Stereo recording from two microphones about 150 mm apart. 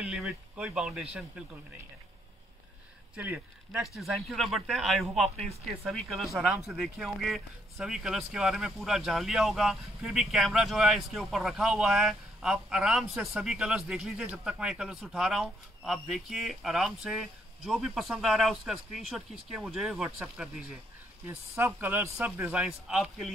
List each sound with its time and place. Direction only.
0.0 s a sound: 5° right (ahead or behind)
3.2 s a man's voice: 10° right (ahead or behind)
3.8 s a man's voice: centre (ahead or behind)